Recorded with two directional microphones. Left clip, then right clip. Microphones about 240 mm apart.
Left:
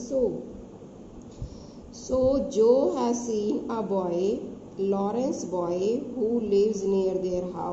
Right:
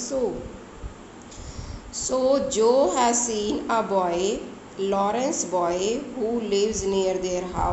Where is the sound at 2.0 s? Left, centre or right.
Right.